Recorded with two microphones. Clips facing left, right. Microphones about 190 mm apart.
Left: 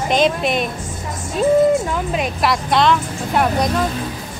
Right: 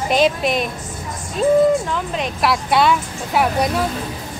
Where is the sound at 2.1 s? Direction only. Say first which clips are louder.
Even; 5° right (ahead or behind).